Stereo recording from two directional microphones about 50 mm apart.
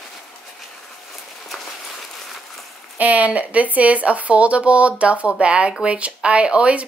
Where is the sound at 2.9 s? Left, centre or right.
Right.